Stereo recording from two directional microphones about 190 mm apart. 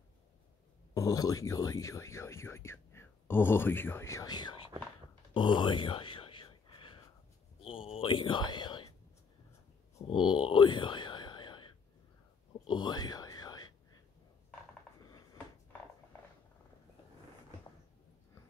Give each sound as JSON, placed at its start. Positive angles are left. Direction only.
{"t": 0.9, "sound": "speech", "side_deg": 20}
{"t": 5.3, "sound": "whispering", "side_deg": 25}
{"t": 10.0, "sound": "speech", "side_deg": 25}
{"t": 12.6, "sound": "whispering", "side_deg": 25}